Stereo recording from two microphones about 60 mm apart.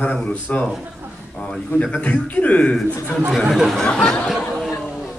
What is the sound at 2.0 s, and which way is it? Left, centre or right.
Speech, left.